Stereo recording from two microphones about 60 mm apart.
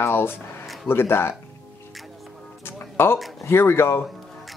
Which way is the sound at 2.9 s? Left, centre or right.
Left.